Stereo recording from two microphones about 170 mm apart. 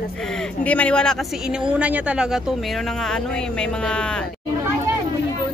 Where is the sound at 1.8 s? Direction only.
10° right (ahead or behind).